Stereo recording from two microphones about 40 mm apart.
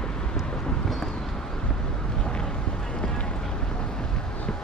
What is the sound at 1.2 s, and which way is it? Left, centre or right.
Vehicle, centre.